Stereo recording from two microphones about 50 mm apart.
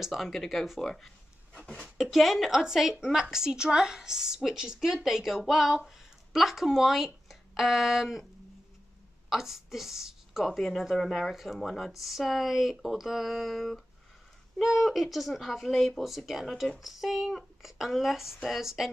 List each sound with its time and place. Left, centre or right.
0.0 s speech: centre
2.0 s a woman's voice: centre
7.2 s a sound: centre
9.3 s a woman's voice: centre